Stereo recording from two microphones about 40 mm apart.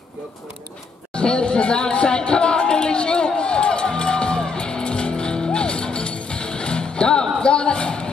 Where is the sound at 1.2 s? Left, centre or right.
Left.